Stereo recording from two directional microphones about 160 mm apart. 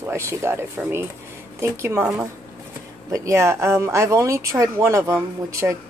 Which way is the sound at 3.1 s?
20° right (ahead or behind).